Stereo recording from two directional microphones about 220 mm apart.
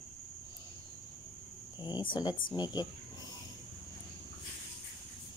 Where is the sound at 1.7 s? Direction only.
20° left (ahead or behind).